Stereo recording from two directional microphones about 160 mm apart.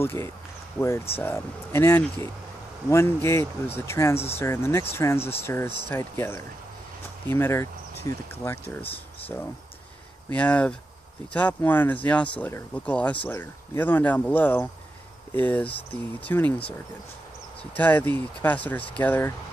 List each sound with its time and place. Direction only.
0.0 s speech: 15° left (ahead or behind)
10.3 s speech: 10° left (ahead or behind)
17.7 s speech: 10° left (ahead or behind)